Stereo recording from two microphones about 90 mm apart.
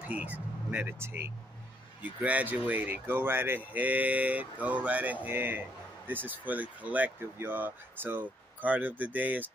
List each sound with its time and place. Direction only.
0.0 s speech: 15° right (ahead or behind)